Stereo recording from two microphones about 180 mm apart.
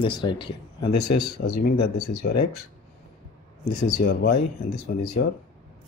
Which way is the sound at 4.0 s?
60° left (ahead or behind).